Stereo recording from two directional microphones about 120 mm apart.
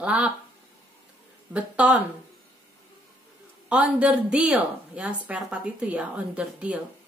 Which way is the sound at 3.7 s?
10° right (ahead or behind).